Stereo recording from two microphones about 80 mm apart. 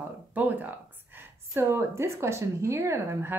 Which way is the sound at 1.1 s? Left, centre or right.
Right.